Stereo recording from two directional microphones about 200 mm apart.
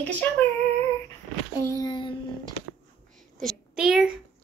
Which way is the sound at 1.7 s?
20° left (ahead or behind).